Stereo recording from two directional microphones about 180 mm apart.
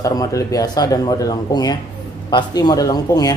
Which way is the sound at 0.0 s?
20° left (ahead or behind).